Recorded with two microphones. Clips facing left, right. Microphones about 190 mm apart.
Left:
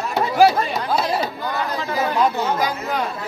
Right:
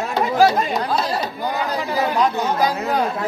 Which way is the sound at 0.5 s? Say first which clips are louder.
Right 1 dB; 15° right (ahead or behind).